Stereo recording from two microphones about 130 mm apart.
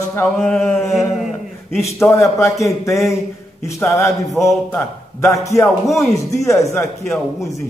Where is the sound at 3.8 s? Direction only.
20° left (ahead or behind).